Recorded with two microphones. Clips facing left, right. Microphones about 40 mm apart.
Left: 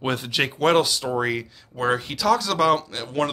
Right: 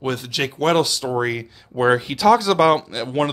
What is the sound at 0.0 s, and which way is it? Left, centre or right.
Speech, centre.